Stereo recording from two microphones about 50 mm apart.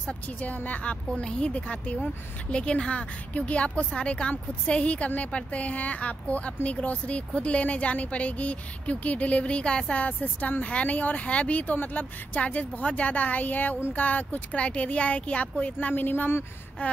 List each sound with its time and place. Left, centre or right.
0.4 s a woman's voice: left
10.0 s a woman's voice: left
16.8 s a woman's voice: left